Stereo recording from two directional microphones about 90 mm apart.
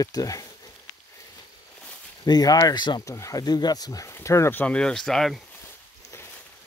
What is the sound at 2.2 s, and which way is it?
Speech, 45° left (ahead or behind).